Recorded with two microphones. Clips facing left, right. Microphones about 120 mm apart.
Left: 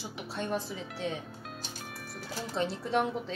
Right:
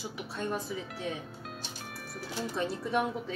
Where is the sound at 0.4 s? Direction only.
30° left (ahead or behind).